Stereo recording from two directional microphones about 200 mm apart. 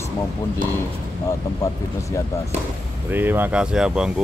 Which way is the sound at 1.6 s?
15° left (ahead or behind).